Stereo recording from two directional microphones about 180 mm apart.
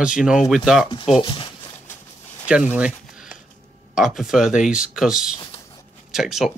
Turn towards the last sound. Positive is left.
turn(degrees=0)  # may be behind; listen again after turning